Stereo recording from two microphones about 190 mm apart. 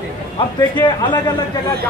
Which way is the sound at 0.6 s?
25° left (ahead or behind).